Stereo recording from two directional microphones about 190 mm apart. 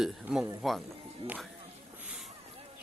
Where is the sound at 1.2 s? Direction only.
30° right (ahead or behind).